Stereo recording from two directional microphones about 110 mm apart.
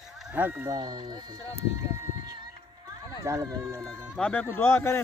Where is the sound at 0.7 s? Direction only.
40° right (ahead or behind).